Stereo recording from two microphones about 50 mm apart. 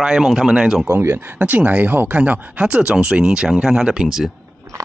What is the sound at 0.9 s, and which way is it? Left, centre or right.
Speech, right.